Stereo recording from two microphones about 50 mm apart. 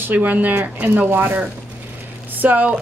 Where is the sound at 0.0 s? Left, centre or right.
Right.